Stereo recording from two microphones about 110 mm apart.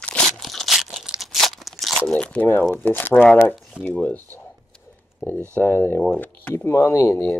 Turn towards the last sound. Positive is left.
turn(degrees=25)  # may be behind; listen again after turning